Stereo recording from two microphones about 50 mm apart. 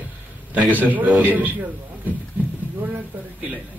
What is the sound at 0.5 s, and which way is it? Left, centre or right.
Speech, right.